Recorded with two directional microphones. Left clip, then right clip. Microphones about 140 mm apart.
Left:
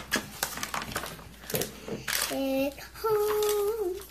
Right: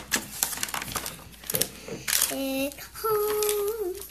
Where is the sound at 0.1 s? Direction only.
Centre (ahead or behind).